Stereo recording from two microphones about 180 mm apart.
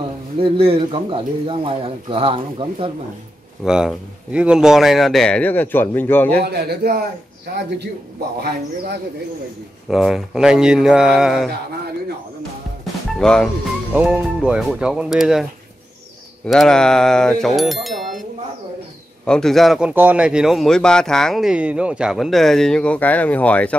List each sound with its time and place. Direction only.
0.4 s speech: 30° right (ahead or behind)
3.6 s a man's voice: 5° right (ahead or behind)
6.4 s a man's voice: 65° right (ahead or behind)
9.8 s a man's voice: centre (ahead or behind)
13.2 s a man's voice: 5° left (ahead or behind)
13.9 s a man's voice: 10° right (ahead or behind)
16.4 s a man's voice: centre (ahead or behind)
19.2 s a man's voice: 5° left (ahead or behind)